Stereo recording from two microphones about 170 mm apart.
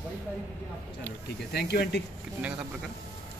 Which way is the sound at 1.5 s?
75° left (ahead or behind).